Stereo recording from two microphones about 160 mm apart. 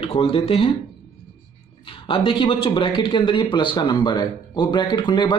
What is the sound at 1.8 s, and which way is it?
Speech, 35° left (ahead or behind).